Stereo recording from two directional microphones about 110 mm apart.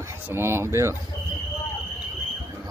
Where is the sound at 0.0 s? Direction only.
20° right (ahead or behind).